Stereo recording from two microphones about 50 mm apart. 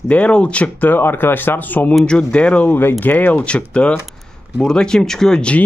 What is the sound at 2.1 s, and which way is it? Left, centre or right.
Speech, left.